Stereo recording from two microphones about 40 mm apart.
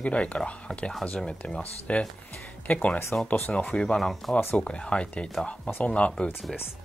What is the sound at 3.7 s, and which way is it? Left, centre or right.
Speech, left.